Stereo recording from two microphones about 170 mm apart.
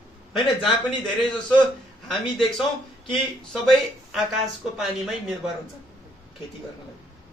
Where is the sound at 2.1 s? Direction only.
Centre (ahead or behind).